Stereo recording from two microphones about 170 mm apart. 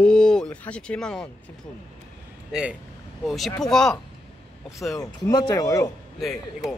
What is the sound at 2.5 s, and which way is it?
Speech, 5° right (ahead or behind).